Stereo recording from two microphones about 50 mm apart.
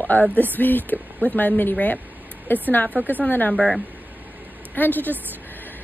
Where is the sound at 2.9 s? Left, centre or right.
Right.